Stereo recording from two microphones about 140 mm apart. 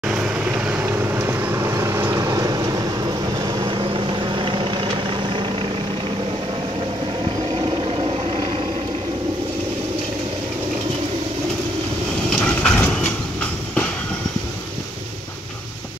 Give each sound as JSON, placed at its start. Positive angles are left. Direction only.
{"t": 0.0, "sound": "vehicle", "side_deg": -5}
{"t": 7.6, "sound": "vehicle", "side_deg": -35}
{"t": 12.3, "sound": "a sound", "side_deg": 5}